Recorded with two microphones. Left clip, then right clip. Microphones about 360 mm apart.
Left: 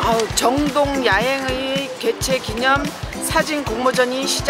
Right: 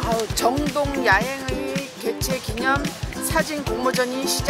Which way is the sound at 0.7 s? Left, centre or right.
Right.